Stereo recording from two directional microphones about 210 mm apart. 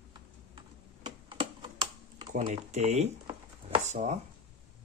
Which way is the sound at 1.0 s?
20° right (ahead or behind).